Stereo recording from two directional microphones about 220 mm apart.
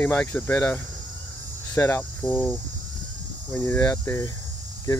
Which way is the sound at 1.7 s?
10° left (ahead or behind).